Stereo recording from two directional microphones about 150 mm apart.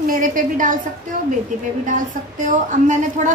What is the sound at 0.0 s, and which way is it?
A woman's voice, 65° right (ahead or behind).